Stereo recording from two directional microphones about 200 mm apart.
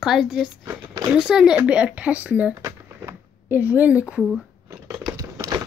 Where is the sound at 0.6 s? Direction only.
15° right (ahead or behind).